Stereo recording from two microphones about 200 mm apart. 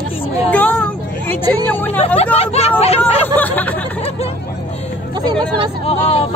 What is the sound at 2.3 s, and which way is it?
Hubbub, 30° left (ahead or behind).